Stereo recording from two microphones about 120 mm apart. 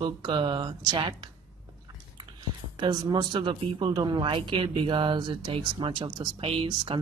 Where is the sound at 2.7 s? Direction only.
40° right (ahead or behind).